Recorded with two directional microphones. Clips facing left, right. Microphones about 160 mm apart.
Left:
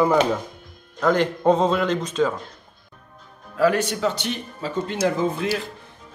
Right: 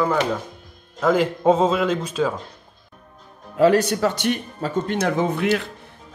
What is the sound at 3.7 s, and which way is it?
Speech, 40° right (ahead or behind).